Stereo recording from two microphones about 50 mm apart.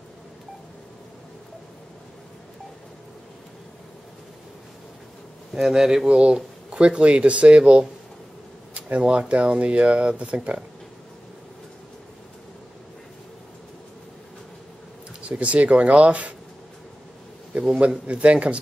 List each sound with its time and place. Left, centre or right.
5.5 s speech: centre
6.0 s speech: right
15.2 s speech: right
17.7 s speech: right